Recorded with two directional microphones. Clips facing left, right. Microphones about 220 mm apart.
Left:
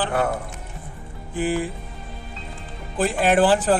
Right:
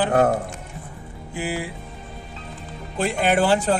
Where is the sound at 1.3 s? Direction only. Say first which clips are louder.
Left 4 dB; 10° right (ahead or behind).